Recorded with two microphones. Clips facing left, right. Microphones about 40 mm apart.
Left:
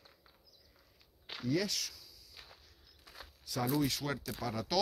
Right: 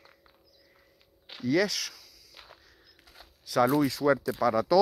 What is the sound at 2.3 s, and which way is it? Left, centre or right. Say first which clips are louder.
Walk: right 5 dB; right.